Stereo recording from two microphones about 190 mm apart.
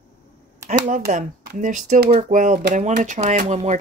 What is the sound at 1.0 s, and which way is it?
Speech, 50° right (ahead or behind).